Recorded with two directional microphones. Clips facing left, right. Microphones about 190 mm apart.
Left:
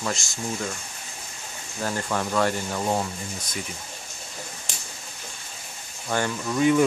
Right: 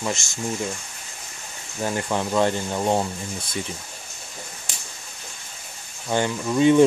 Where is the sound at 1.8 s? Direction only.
15° right (ahead or behind).